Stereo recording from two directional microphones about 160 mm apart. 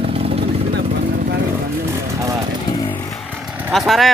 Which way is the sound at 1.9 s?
20° right (ahead or behind).